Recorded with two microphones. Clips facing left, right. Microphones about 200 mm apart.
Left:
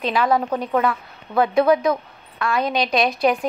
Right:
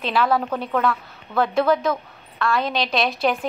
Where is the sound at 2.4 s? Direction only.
Centre (ahead or behind).